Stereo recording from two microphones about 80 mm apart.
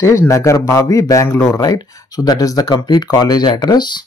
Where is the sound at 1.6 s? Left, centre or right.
Left.